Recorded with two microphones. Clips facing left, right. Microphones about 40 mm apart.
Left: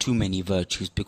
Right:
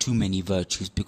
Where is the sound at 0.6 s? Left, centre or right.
Left.